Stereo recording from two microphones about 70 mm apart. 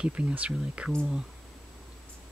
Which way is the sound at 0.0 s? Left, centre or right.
Centre.